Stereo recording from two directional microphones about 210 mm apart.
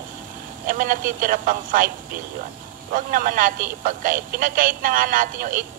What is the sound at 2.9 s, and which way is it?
Speech, 40° right (ahead or behind).